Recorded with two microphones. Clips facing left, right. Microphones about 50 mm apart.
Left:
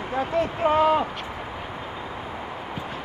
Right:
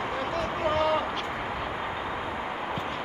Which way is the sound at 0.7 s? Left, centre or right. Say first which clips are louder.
Left 6 dB; left.